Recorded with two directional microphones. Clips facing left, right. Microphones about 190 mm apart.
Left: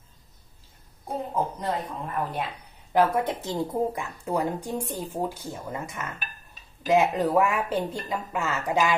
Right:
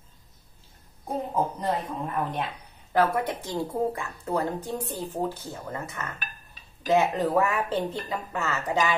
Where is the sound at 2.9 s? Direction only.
20° left (ahead or behind).